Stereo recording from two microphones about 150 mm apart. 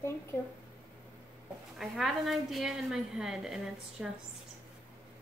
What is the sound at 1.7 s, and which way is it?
A woman's voice, centre (ahead or behind).